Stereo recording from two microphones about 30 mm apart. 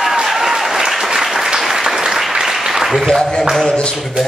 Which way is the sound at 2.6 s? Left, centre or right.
Centre.